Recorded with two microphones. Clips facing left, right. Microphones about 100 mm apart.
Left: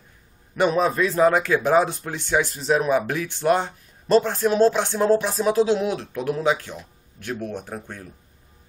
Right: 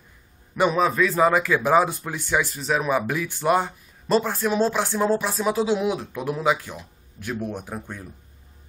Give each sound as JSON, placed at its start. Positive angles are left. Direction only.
{"t": 0.6, "sound": "speech", "side_deg": -5}
{"t": 7.3, "sound": "speech", "side_deg": -20}